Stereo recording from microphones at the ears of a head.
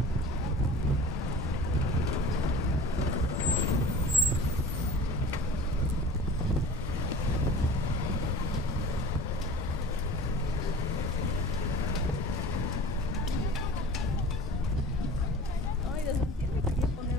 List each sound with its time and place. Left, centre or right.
2.0 s vehicle: left